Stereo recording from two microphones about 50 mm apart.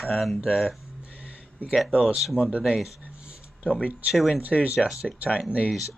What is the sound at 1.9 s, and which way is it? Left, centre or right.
Speech, right.